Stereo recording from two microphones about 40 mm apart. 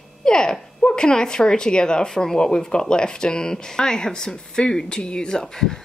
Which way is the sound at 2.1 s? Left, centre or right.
Centre.